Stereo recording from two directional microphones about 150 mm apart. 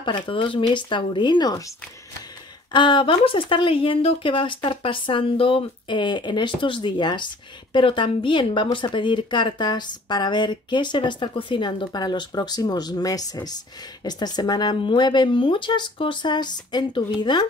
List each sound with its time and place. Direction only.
0.0 s speech: 35° left (ahead or behind)
2.7 s speech: 30° left (ahead or behind)